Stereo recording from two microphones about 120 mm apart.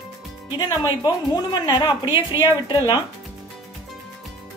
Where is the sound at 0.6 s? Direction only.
35° left (ahead or behind).